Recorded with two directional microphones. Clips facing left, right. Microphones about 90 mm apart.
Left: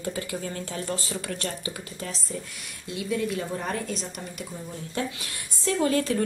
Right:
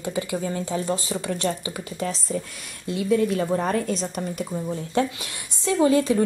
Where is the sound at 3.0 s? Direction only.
40° right (ahead or behind).